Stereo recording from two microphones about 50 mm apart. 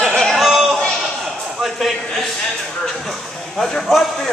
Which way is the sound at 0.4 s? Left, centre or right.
Centre.